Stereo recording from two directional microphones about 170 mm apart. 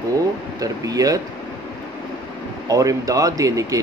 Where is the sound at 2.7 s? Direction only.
20° right (ahead or behind).